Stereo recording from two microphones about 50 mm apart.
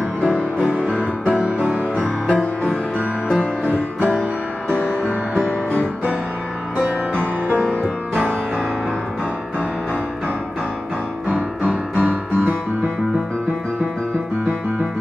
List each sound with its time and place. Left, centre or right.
0.6 s music: centre
1.3 s music: right
4.6 s music: left
11.9 s music: right